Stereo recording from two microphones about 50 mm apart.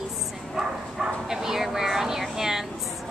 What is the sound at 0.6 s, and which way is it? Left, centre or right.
Bow-wow, centre.